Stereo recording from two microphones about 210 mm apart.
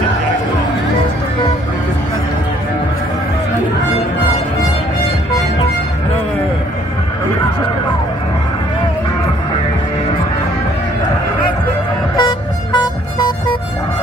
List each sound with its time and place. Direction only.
12.2 s vehicle: 20° left (ahead or behind)